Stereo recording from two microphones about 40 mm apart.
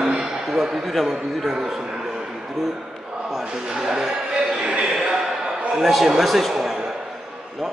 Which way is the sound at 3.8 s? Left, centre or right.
Centre.